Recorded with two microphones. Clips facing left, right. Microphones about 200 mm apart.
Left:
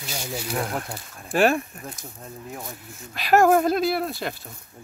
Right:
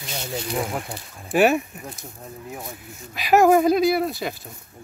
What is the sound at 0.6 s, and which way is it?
Speech, 5° right (ahead or behind).